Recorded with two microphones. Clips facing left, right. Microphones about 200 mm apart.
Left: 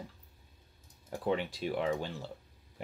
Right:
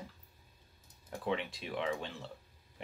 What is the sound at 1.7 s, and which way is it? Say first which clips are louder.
Speech: left 3 dB; 40° left (ahead or behind).